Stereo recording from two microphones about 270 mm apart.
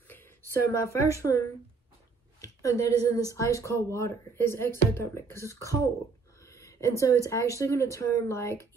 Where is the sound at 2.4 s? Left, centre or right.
Centre.